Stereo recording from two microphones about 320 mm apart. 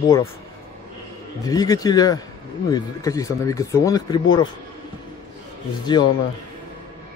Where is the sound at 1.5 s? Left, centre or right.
Centre.